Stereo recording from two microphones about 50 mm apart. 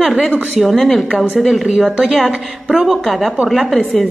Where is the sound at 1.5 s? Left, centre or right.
Centre.